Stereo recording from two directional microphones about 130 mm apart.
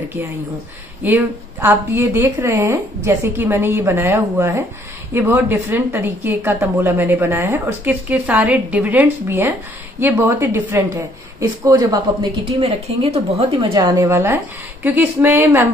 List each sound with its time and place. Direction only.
1.0 s a woman's voice: 15° right (ahead or behind); by 12.3 s 35° right (ahead or behind)
12.4 s speech: 55° right (ahead or behind)
13.6 s a woman's voice: 35° right (ahead or behind)
13.9 s a woman's voice: 20° right (ahead or behind)